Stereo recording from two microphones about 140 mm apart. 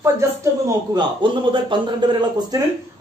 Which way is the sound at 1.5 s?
35° right (ahead or behind).